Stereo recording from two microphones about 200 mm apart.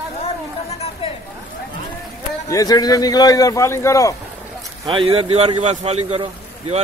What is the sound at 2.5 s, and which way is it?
A man's voice, 20° left (ahead or behind).